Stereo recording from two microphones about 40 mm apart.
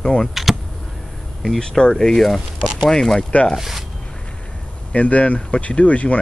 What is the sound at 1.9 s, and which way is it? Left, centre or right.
Speech, centre.